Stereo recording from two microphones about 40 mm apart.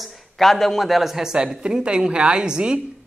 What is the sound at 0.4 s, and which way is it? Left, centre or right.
Speech, centre.